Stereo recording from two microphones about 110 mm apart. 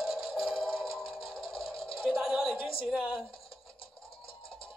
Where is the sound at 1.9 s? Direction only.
Centre (ahead or behind).